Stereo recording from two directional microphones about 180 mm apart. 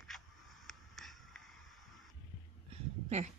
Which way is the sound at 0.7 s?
Centre (ahead or behind).